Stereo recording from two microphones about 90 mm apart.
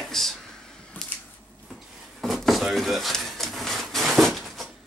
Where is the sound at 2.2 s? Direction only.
Centre (ahead or behind).